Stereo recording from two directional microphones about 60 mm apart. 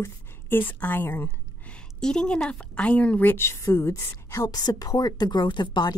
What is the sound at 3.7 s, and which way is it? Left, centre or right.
A woman's voice, left.